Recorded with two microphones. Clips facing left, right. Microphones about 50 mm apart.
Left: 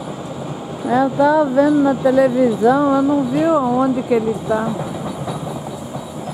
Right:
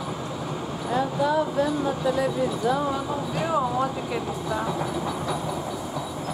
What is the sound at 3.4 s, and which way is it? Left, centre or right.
Speech, centre.